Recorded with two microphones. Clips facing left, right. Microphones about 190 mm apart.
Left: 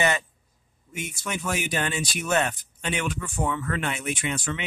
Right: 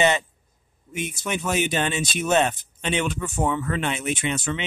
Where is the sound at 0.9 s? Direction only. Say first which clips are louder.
Right 4 dB; 20° right (ahead or behind).